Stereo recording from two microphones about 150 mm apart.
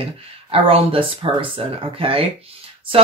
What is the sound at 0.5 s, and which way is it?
Speech, 40° right (ahead or behind).